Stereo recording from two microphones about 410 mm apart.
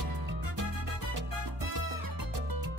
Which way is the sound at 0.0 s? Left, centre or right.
Right.